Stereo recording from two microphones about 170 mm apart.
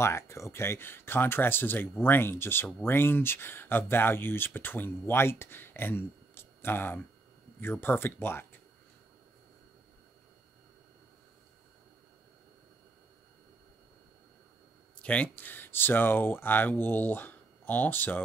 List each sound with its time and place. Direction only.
0.0 s speech: 15° left (ahead or behind)
15.0 s speech: 5° left (ahead or behind)